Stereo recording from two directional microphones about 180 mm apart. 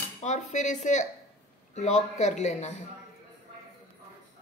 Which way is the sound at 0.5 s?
45° left (ahead or behind).